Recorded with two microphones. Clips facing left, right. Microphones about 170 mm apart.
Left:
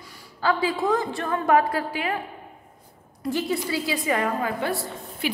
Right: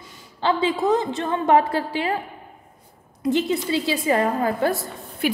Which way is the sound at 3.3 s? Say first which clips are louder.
Right 4 dB; 25° right (ahead or behind).